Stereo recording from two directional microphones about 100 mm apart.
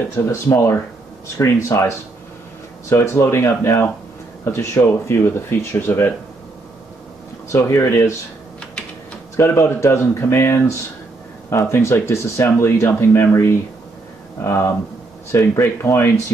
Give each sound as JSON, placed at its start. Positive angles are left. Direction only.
{"t": 0.2, "sound": "speech", "side_deg": 25}
{"t": 1.4, "sound": "speech", "side_deg": 30}
{"t": 7.5, "sound": "speech", "side_deg": 30}
{"t": 9.4, "sound": "speech", "side_deg": 25}